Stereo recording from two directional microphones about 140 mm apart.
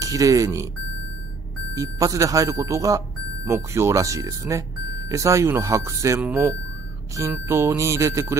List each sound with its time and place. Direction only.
0.0 s speech: 25° right (ahead or behind)
1.7 s speech: 25° right (ahead or behind)